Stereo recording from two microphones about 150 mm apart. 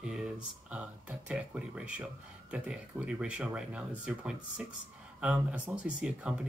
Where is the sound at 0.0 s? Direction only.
5° right (ahead or behind).